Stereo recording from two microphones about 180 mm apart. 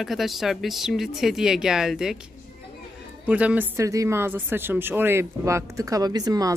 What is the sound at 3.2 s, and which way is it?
A woman's voice, 10° right (ahead or behind).